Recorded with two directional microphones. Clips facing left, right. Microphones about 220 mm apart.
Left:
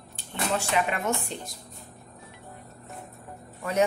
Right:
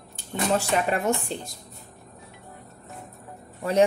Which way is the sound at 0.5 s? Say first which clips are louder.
Right 2 dB; 40° right (ahead or behind).